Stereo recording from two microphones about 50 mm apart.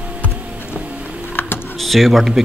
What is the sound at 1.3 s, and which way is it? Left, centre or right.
Typing, left.